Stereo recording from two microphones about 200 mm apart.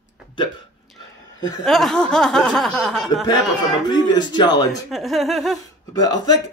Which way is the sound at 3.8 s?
20° left (ahead or behind).